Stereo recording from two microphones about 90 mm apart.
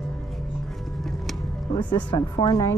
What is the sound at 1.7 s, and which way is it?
Speech, 60° left (ahead or behind).